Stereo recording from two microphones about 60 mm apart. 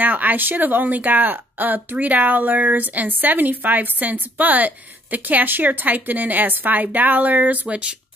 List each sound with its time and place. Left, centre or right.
0.0 s speech: right